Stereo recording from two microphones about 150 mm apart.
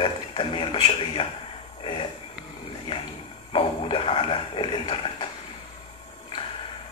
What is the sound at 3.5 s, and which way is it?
Speech, 35° left (ahead or behind).